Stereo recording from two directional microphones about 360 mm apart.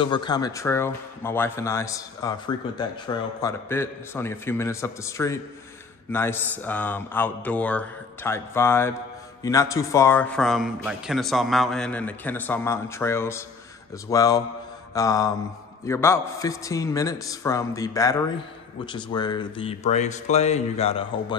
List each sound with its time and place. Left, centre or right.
0.0 s speech: centre